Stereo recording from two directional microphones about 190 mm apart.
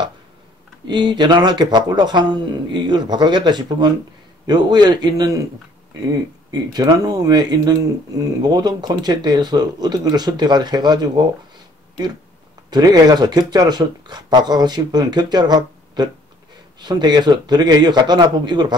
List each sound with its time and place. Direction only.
0.8 s speech: 25° right (ahead or behind)
6.7 s speech: 20° right (ahead or behind)
12.6 s speech: 20° right (ahead or behind)